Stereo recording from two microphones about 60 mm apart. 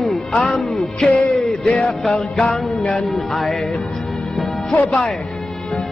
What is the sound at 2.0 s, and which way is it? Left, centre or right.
Music, centre.